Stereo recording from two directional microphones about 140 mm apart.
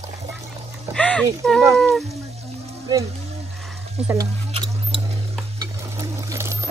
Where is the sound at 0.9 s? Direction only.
10° left (ahead or behind).